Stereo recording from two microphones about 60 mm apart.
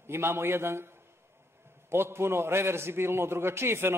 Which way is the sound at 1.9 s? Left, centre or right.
Right.